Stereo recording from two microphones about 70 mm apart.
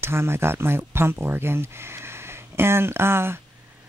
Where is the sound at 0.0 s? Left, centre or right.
Right.